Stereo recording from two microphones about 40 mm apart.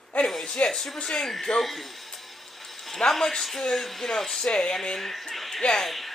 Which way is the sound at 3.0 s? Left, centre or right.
Centre.